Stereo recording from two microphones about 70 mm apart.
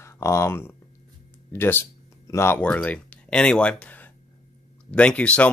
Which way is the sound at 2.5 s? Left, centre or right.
Centre.